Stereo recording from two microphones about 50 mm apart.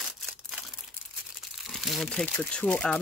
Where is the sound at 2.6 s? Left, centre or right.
Left.